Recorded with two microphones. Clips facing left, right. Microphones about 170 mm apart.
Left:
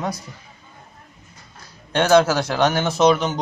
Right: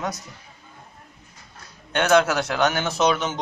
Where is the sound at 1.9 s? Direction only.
30° left (ahead or behind).